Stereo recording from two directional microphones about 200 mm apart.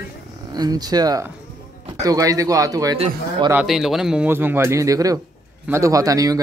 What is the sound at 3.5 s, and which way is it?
Speech, 5° right (ahead or behind).